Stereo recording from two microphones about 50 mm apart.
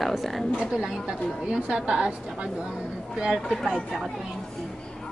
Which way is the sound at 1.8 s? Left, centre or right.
Right.